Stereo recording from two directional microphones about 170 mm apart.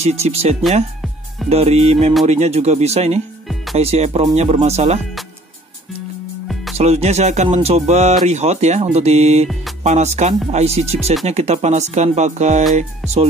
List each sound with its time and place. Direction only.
0.0 s speech: 40° right (ahead or behind)
6.4 s music: centre (ahead or behind)
6.8 s speech: 40° right (ahead or behind)